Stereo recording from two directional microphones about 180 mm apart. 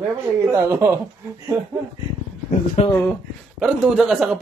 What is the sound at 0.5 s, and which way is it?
Speech, 15° right (ahead or behind).